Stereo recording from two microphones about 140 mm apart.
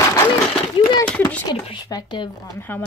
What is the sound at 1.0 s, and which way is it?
Speech, 10° left (ahead or behind).